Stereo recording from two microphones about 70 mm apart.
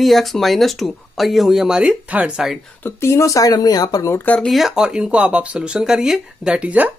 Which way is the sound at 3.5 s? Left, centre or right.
Left.